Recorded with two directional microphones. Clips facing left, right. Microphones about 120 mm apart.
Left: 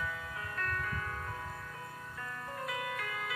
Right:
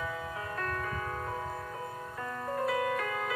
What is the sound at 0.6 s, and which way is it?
Music, 25° right (ahead or behind).